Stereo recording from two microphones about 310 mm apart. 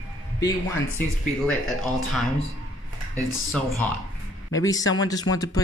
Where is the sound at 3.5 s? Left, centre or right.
Centre.